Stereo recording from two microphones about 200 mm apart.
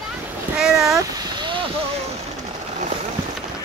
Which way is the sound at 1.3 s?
25° right (ahead or behind).